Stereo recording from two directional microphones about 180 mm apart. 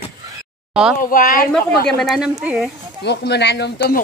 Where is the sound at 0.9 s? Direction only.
50° left (ahead or behind).